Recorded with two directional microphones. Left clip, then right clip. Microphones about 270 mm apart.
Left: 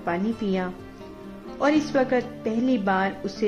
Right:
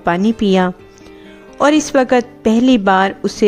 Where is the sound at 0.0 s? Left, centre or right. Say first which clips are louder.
Right 11 dB; right.